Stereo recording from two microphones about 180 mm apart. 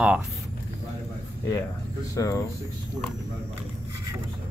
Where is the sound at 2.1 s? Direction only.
20° left (ahead or behind).